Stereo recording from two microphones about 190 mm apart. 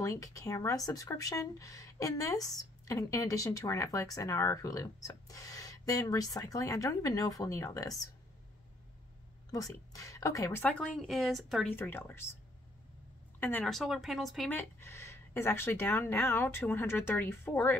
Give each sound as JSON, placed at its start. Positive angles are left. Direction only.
{"t": 0.0, "sound": "speech", "side_deg": 15}
{"t": 9.5, "sound": "speech", "side_deg": 20}
{"t": 11.7, "sound": "speech", "side_deg": 10}
{"t": 13.4, "sound": "speech", "side_deg": 10}
{"t": 14.5, "sound": "speech", "side_deg": 10}